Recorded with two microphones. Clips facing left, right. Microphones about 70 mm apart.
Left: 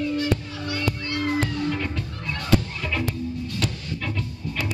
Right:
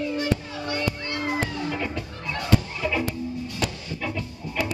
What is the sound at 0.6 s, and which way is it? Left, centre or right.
Music, right.